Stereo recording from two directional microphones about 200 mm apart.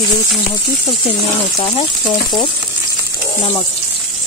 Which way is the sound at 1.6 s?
30° left (ahead or behind).